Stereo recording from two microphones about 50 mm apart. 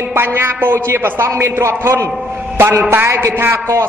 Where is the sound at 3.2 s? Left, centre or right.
Right.